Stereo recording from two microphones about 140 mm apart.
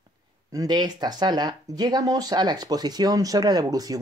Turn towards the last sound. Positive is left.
turn(degrees=-25)  # may be behind; listen again after turning